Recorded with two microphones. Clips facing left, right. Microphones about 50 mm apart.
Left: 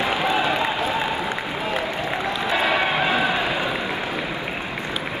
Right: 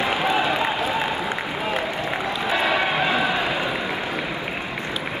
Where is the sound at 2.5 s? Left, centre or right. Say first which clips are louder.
Even; centre.